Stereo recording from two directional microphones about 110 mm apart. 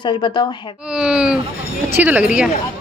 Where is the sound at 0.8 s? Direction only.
10° right (ahead or behind).